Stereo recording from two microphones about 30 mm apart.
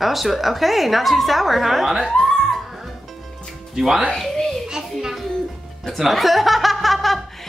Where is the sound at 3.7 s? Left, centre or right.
Centre.